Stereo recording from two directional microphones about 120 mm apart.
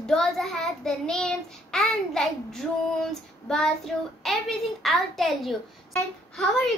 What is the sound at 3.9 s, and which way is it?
A child's voice, 5° left (ahead or behind).